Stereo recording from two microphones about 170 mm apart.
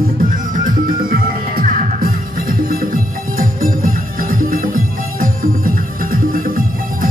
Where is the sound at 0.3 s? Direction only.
55° right (ahead or behind).